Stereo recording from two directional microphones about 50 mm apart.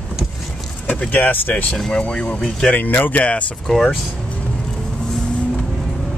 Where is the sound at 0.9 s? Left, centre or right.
Left.